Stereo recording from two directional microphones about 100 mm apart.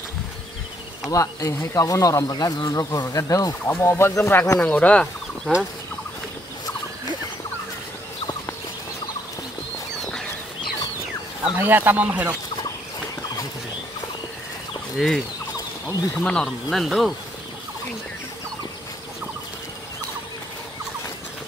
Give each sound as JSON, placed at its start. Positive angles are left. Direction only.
{"t": 1.1, "sound": "speech", "side_deg": 30}
{"t": 3.6, "sound": "speech", "side_deg": 20}
{"t": 4.6, "sound": "speech", "side_deg": 15}
{"t": 11.5, "sound": "speech", "side_deg": -20}
{"t": 15.0, "sound": "speech", "side_deg": 0}